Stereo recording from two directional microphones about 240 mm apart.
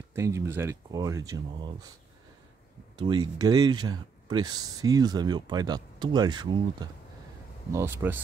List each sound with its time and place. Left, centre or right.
0.1 s speech: centre
3.0 s speech: centre